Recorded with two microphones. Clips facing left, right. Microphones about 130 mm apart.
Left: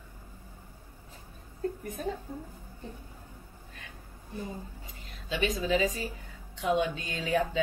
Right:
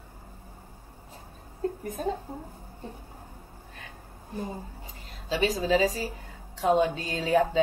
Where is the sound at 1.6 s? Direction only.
35° right (ahead or behind).